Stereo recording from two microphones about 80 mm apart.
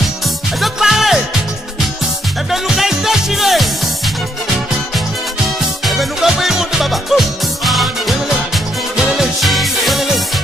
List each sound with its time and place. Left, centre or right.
0.6 s music: centre
2.5 s music: centre
5.6 s music: centre